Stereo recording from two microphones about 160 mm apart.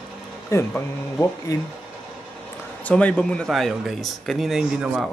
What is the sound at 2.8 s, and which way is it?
Speech, 10° left (ahead or behind).